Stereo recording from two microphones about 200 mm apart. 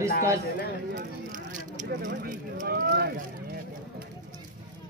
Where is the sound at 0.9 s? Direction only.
40° right (ahead or behind).